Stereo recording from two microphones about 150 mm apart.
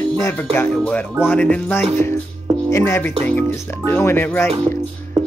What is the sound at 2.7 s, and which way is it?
Music, 20° left (ahead or behind).